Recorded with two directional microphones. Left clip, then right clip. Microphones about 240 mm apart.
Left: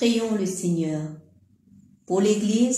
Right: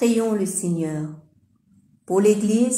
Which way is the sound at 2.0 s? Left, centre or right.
Right.